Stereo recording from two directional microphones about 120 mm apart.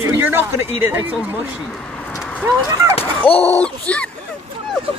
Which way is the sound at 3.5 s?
10° left (ahead or behind).